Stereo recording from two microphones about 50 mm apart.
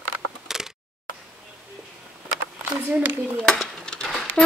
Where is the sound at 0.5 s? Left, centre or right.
Centre.